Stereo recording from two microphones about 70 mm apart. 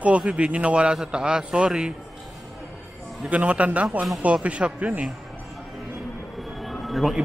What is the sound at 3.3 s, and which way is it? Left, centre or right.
Speech, centre.